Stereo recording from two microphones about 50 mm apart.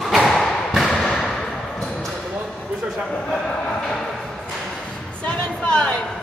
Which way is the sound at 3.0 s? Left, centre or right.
Centre.